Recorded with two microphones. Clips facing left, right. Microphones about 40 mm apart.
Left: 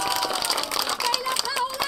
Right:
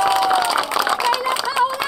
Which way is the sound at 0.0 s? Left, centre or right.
Right.